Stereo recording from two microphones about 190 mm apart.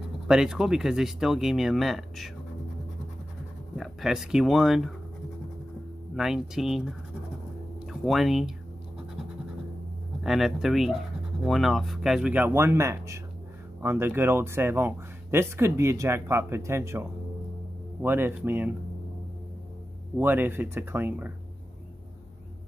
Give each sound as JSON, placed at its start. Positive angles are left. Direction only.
{"t": 0.3, "sound": "speech", "side_deg": -5}
{"t": 3.7, "sound": "speech", "side_deg": 0}
{"t": 6.1, "sound": "speech", "side_deg": 0}
{"t": 10.2, "sound": "speech", "side_deg": 0}
{"t": 20.2, "sound": "speech", "side_deg": -10}